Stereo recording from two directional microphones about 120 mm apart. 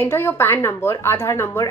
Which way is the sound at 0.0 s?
20° left (ahead or behind).